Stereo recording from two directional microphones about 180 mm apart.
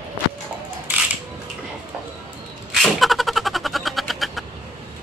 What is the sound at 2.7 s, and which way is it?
Vehicle, centre (ahead or behind).